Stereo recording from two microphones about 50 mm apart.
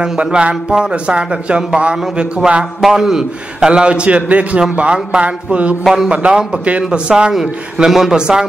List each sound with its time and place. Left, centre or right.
0.0 s speech: right
2.8 s a man's voice: centre